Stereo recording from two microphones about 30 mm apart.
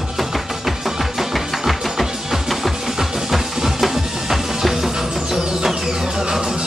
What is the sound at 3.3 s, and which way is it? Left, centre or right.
Music, centre.